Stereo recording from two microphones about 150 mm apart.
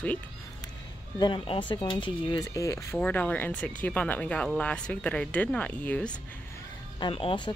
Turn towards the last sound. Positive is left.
turn(degrees=35)  # may be behind; listen again after turning